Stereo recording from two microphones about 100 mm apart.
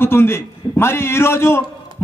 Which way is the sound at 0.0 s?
25° left (ahead or behind).